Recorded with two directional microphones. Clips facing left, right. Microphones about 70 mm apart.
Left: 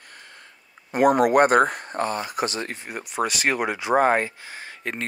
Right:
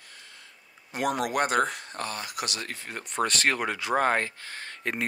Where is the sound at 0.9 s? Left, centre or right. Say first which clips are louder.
Left 10 dB; left.